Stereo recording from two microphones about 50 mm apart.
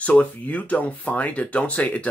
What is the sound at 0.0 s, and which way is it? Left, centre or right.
Speech, left.